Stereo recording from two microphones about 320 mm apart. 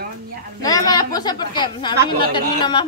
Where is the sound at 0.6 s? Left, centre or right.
Centre.